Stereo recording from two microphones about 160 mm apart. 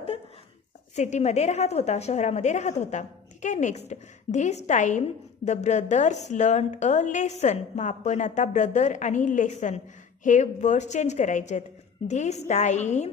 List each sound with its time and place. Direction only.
0.9 s a woman's voice: 45° left (ahead or behind)